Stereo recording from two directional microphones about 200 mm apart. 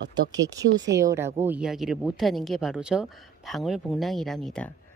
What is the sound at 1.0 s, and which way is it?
Speech, 10° right (ahead or behind).